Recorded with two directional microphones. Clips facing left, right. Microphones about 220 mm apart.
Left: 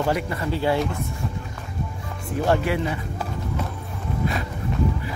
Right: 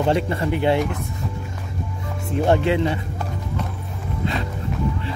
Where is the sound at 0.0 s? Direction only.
25° right (ahead or behind).